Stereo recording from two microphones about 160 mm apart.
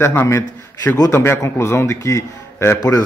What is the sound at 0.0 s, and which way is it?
A man's voice, 15° left (ahead or behind).